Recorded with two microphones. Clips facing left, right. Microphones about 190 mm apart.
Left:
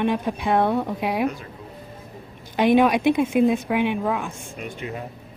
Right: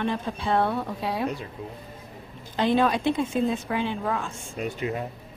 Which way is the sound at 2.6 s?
15° left (ahead or behind).